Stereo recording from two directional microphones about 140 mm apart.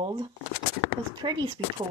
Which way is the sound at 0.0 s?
35° right (ahead or behind).